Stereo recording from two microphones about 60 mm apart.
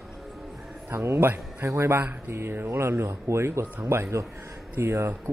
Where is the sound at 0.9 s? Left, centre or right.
Right.